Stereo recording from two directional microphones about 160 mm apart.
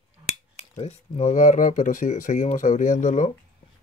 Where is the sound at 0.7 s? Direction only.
40° left (ahead or behind).